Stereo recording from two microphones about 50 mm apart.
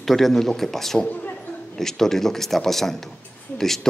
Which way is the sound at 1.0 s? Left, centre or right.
Left.